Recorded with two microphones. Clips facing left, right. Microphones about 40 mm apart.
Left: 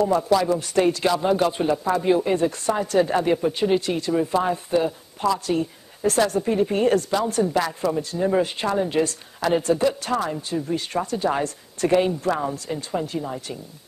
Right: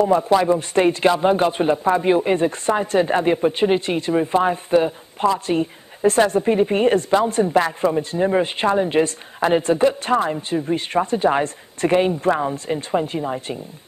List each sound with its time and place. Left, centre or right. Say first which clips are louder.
0.0 s a man's voice: right 3 dB; right